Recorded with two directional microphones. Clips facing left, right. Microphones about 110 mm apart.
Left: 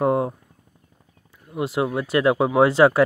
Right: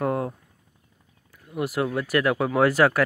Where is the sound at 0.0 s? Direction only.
25° left (ahead or behind).